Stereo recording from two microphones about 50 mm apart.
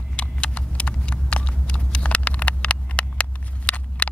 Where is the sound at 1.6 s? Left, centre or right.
Left.